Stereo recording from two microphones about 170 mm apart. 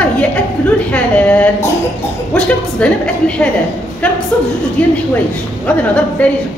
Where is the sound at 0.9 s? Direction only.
5° left (ahead or behind).